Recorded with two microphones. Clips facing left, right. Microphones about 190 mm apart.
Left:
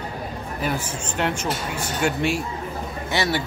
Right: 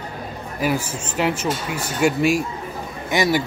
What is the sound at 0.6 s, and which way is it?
A man's voice, 5° right (ahead or behind).